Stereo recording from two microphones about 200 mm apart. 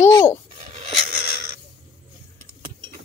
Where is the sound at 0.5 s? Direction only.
40° right (ahead or behind).